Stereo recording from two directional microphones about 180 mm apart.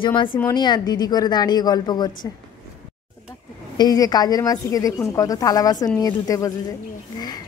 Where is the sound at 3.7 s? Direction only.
20° left (ahead or behind).